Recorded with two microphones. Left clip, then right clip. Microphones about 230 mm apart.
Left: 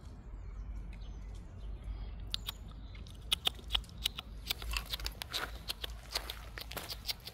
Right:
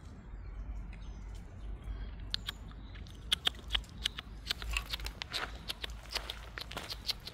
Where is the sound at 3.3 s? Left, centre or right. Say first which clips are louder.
Right 1 dB; centre.